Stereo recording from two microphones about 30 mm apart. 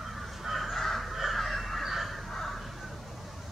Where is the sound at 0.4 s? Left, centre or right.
Centre.